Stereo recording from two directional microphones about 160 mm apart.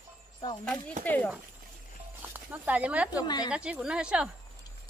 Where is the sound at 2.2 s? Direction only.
10° right (ahead or behind).